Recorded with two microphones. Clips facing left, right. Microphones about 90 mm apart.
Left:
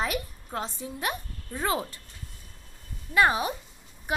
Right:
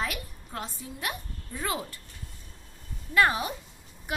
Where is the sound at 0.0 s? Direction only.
25° left (ahead or behind).